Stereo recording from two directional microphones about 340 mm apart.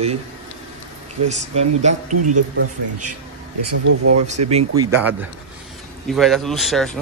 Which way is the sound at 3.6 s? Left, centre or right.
Right.